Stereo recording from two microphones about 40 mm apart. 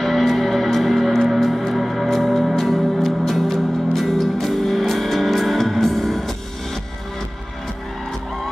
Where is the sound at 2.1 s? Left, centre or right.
Centre.